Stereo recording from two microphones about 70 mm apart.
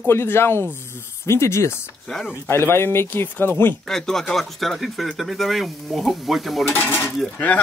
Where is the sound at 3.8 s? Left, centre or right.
Centre.